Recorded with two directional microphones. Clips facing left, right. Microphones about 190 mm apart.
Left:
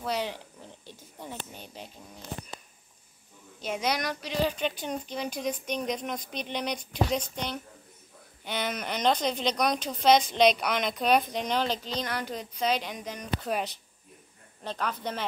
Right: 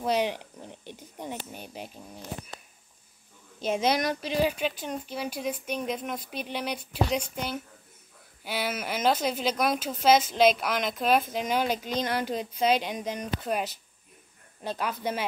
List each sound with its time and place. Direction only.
0.0 s a sound: 15° right (ahead or behind)
3.6 s speech: 25° right (ahead or behind)
4.4 s speech: 10° right (ahead or behind)
12.0 s speech: 25° right (ahead or behind)
12.5 s speech: 5° right (ahead or behind)
12.8 s speech: 20° right (ahead or behind)
13.4 s speech: 5° right (ahead or behind)